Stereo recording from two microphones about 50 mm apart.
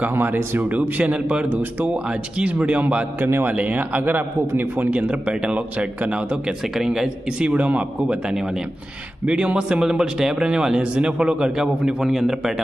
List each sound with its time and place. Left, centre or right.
0.1 s speech: right
0.6 s speech: right
2.6 s a man's voice: right
4.9 s a man's voice: right
6.8 s a man's voice: centre
7.4 s a man's voice: right; by 12.6 s centre